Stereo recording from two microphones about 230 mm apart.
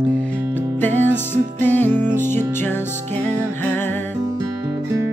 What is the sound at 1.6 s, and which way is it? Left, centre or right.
Music, centre.